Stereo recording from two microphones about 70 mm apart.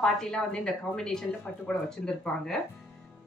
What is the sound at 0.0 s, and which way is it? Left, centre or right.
A woman's voice, centre.